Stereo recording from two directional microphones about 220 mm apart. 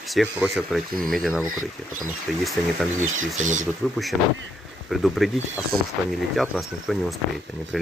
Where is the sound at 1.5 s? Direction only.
35° right (ahead or behind).